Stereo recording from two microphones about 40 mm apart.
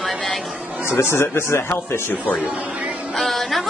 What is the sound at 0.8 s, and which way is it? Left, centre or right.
Speech, left.